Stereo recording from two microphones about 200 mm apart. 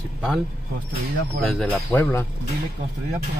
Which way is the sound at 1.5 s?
5° left (ahead or behind).